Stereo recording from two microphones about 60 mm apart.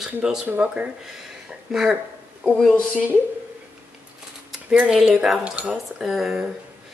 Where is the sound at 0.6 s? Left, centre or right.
Right.